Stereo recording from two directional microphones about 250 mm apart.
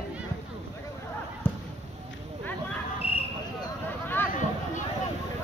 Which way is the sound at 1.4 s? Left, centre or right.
Centre.